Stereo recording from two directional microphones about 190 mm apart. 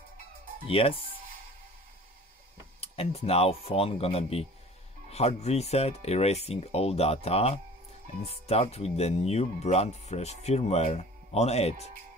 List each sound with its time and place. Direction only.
0.7 s speech: 30° left (ahead or behind)
2.8 s speech: 30° left (ahead or behind)